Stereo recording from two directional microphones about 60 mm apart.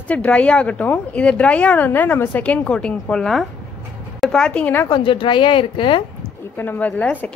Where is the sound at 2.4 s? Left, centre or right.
Centre.